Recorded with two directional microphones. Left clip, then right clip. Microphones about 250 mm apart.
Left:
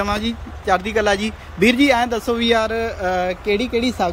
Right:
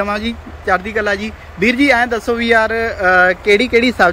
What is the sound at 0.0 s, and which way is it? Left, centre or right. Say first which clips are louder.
A man's voice: right 3 dB; centre.